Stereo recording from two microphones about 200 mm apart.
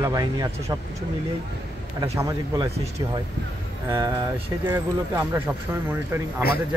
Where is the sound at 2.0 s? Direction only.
15° right (ahead or behind).